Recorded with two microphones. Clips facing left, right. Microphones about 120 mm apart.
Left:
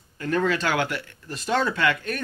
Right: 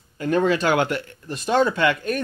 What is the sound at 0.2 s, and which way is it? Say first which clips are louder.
Speech: right 4 dB; 20° right (ahead or behind).